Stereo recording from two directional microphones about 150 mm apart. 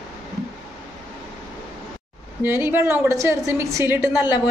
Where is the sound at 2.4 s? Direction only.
15° right (ahead or behind).